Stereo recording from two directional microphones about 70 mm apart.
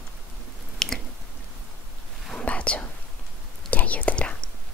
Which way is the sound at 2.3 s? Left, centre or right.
Centre.